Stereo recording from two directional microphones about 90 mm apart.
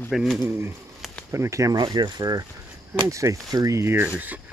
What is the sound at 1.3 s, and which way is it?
Speech, 35° right (ahead or behind).